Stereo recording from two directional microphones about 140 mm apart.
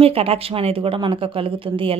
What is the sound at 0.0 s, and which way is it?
Speech, 45° right (ahead or behind).